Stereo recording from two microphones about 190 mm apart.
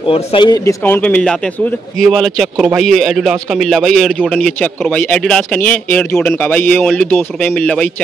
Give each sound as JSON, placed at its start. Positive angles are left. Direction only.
{"t": 0.1, "sound": "speech", "side_deg": 25}
{"t": 0.8, "sound": "a man's voice", "side_deg": 10}